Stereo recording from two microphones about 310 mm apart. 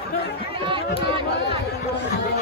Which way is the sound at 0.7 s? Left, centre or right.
Centre.